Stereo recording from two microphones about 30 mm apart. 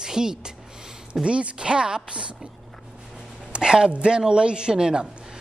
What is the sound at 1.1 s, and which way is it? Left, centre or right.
A woman's voice, right.